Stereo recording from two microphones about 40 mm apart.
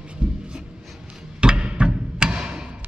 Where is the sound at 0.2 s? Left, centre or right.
Right.